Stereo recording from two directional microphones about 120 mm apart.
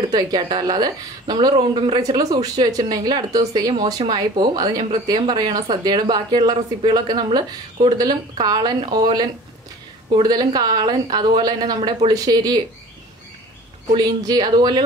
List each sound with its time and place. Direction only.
0.1 s speech: 35° right (ahead or behind)
1.6 s speech: 45° right (ahead or behind)
2.0 s speech: 30° right (ahead or behind)
13.9 s speech: 35° right (ahead or behind)